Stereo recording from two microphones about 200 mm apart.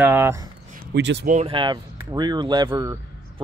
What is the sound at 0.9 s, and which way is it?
Speech, 60° right (ahead or behind).